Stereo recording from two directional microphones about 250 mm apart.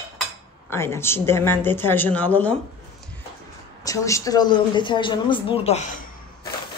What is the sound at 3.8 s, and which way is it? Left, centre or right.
Speech, centre.